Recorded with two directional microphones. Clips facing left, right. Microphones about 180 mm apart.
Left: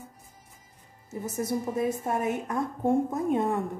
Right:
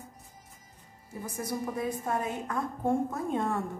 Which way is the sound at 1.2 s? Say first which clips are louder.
Left 4 dB; 25° left (ahead or behind).